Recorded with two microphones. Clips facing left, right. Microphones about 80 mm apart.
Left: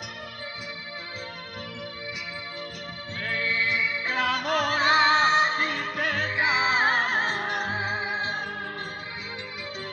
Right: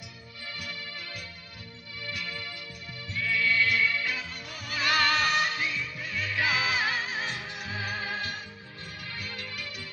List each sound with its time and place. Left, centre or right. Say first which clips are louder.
3.2 s music: right 1 dB; left
4.2 s music: left 16 dB; left
4.7 s music: left 4 dB; left
5.6 s music: left 6 dB; left
6.3 s music: left 2 dB; left
7.7 s music: left 5 dB; left